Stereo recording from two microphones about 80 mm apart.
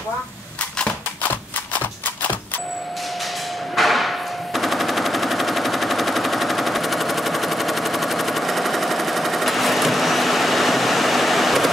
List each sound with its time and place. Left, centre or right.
0.7 s a sound: centre
3.7 s hammer: centre
4.6 s machine gun: centre